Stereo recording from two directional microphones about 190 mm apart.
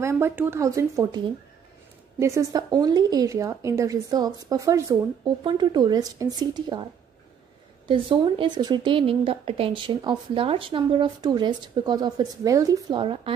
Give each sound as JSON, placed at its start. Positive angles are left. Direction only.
{"t": 0.0, "sound": "a woman's voice", "side_deg": -15}
{"t": 7.9, "sound": "a woman's voice", "side_deg": -25}